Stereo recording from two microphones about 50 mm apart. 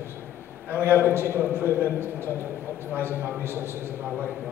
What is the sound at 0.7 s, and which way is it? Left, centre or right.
Speech, right.